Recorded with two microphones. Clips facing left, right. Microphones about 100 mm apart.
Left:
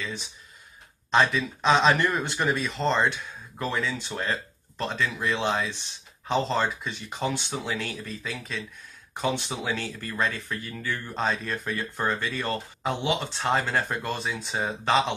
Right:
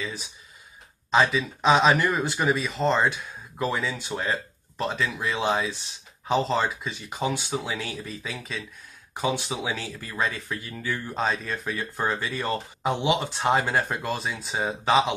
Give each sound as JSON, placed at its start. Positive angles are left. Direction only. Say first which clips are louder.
{"t": 0.0, "sound": "speech", "louder": "right 1 dB", "side_deg": -5}